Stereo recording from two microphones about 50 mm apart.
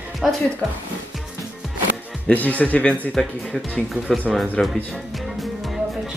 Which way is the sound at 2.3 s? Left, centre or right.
Left.